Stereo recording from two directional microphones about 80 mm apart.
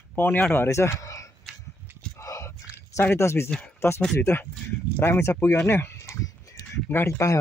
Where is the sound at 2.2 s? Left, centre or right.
Left.